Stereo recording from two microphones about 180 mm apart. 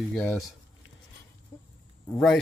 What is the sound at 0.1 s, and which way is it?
Speech, centre (ahead or behind).